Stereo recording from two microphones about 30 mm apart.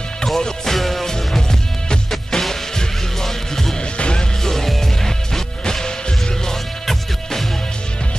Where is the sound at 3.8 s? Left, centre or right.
Left.